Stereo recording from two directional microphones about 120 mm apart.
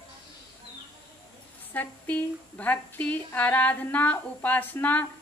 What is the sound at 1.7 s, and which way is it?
Speech, 15° left (ahead or behind).